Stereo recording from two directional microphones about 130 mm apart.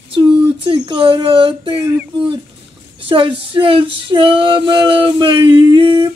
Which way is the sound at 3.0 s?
40° right (ahead or behind).